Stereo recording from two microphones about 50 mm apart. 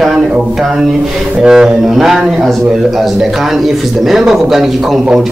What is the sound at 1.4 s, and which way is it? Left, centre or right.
Speech, centre.